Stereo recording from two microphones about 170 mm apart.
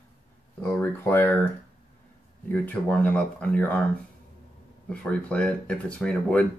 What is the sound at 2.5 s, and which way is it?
Speech, 10° left (ahead or behind).